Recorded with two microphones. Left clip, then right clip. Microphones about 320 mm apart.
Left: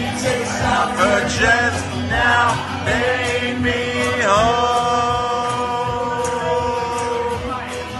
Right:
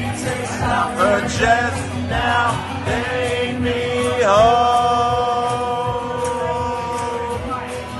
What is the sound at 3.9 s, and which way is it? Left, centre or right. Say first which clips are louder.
Chant: right 2 dB; centre.